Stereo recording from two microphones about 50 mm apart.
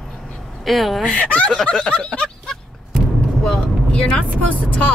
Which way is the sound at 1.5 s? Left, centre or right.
Centre.